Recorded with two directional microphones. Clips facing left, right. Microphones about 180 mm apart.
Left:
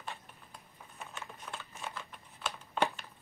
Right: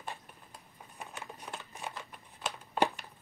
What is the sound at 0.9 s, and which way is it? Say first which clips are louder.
Scissors: right 1 dB; 15° right (ahead or behind).